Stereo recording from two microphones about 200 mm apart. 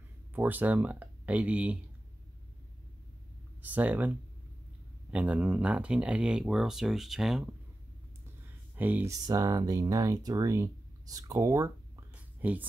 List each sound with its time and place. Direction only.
0.3 s speech: 10° right (ahead or behind)
3.6 s speech: 10° right (ahead or behind)
5.1 s speech: 5° right (ahead or behind)
8.7 s speech: 10° right (ahead or behind)